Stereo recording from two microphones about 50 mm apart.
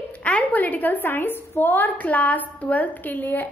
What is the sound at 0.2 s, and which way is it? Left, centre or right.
A woman's voice, left.